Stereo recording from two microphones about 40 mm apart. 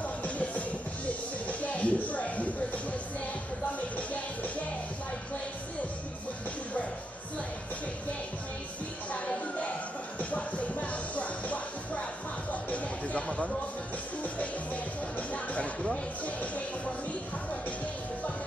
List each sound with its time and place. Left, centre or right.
0.0 s music: left
3.9 s music: left
10.3 s music: left
14.2 s music: left